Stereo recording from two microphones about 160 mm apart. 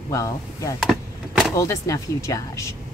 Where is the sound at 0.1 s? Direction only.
20° left (ahead or behind).